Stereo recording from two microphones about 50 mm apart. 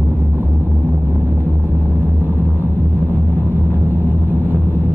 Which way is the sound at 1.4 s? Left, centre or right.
Right.